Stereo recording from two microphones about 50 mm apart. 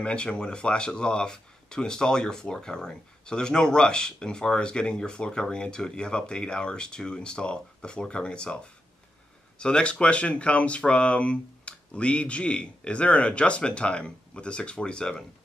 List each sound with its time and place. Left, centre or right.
0.0 s speech: left
9.6 s speech: centre